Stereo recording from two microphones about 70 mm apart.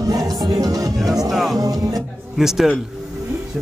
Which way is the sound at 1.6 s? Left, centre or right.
Right.